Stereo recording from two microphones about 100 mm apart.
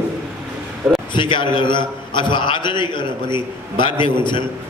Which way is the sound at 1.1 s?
55° left (ahead or behind).